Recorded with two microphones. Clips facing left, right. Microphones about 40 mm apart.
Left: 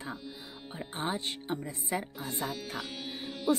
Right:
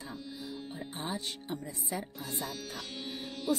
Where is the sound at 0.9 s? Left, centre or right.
Left.